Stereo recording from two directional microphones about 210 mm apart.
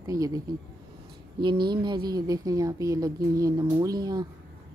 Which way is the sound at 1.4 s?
20° right (ahead or behind).